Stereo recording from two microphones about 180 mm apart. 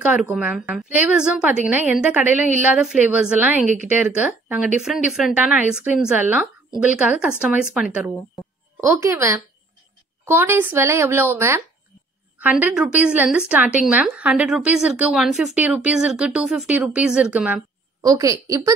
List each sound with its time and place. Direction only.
0.0 s a woman's voice: 5° right (ahead or behind)
8.8 s a woman's voice: 15° right (ahead or behind)
18.0 s a woman's voice: 20° right (ahead or behind)